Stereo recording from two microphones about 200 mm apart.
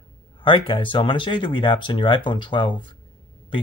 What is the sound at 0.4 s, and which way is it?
Speech, 25° left (ahead or behind).